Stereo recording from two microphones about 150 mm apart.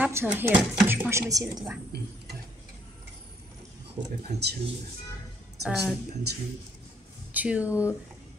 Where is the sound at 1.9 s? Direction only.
90° right.